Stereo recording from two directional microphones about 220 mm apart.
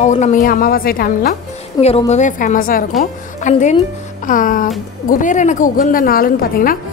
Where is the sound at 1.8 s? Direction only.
15° left (ahead or behind).